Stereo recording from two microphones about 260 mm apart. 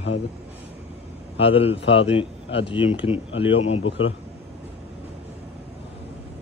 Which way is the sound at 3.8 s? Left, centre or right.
Left.